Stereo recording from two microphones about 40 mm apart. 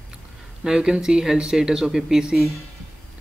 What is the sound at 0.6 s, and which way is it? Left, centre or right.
Speech, centre.